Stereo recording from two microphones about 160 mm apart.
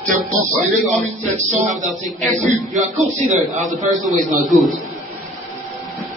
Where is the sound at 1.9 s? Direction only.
Centre (ahead or behind).